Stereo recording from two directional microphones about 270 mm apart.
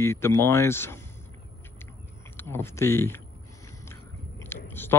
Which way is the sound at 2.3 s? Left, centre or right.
Centre.